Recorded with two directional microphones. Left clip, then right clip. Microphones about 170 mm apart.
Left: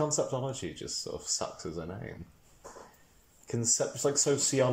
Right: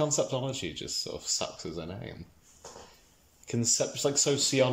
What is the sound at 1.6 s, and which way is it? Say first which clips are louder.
Speech: right 1 dB; 15° right (ahead or behind).